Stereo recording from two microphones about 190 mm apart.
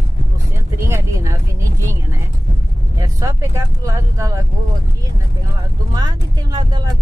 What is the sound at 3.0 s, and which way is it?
Speech, 15° right (ahead or behind).